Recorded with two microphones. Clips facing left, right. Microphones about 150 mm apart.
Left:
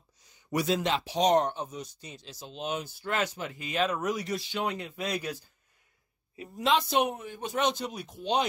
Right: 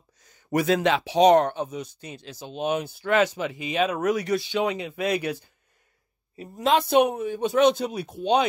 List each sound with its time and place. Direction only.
0.2 s speech: 50° right (ahead or behind); by 3.6 s 90° right
3.7 s speech: 60° right (ahead or behind)
6.3 s a woman's voice: 40° right (ahead or behind)
6.8 s speech: 75° right (ahead or behind)